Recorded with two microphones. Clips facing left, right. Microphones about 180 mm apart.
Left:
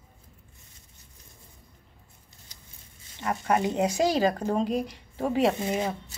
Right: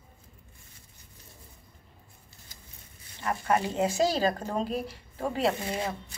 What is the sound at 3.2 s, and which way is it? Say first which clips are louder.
Speech: left 2 dB; 20° left (ahead or behind).